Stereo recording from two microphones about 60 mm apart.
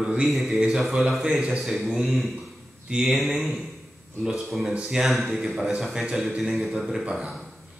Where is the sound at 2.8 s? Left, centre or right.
Centre.